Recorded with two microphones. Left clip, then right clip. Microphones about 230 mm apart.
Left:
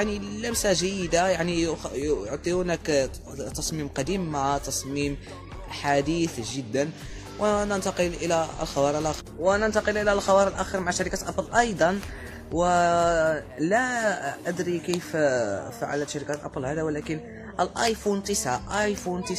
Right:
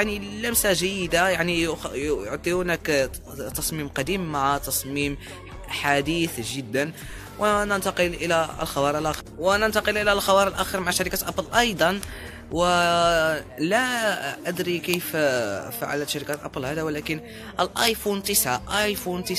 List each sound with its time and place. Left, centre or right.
0.0 s speech: centre